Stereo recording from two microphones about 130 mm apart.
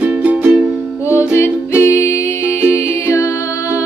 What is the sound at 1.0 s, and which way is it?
Music, 20° left (ahead or behind).